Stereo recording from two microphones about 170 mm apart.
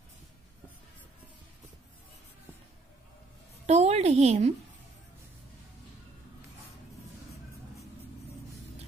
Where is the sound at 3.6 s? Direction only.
40° right (ahead or behind).